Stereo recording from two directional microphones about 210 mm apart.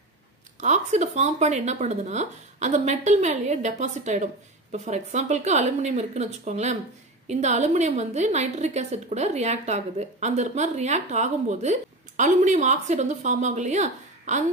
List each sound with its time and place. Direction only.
0.6 s a woman's voice: 35° right (ahead or behind)